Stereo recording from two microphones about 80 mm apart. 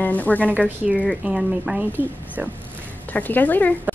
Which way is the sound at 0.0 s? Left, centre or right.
Centre.